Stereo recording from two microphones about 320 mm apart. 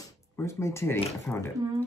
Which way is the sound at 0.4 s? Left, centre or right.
Centre.